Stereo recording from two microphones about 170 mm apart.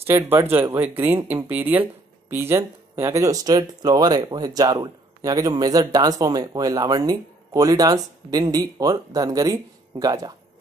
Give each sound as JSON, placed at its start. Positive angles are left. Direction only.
{"t": 0.0, "sound": "speech", "side_deg": -15}